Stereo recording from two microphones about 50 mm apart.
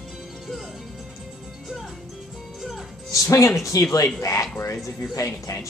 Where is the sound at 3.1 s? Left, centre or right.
Left.